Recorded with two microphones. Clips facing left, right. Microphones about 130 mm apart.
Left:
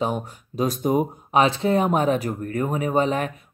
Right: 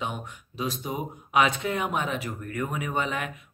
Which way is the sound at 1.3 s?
30° left (ahead or behind).